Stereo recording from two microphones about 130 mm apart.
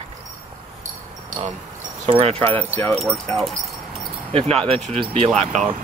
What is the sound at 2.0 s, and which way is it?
Speech, 50° right (ahead or behind).